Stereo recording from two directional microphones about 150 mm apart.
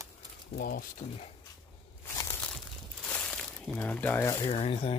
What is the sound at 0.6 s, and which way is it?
Speech, 85° left.